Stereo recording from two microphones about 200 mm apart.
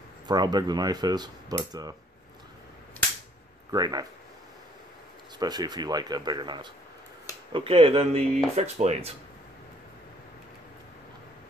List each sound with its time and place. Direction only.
0.3 s cutlery: 20° right (ahead or behind)
3.7 s cutlery: 20° right (ahead or behind)
5.4 s cutlery: 20° right (ahead or behind)
8.5 s speech: 30° right (ahead or behind)